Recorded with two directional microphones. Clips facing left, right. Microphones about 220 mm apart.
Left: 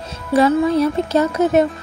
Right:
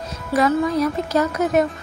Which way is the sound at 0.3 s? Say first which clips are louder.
Left 4 dB; 30° left (ahead or behind).